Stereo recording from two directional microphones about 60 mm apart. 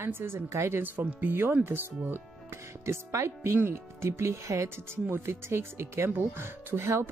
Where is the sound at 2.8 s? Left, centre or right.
Right.